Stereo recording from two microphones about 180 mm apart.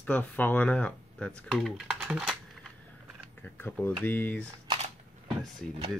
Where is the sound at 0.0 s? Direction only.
10° left (ahead or behind).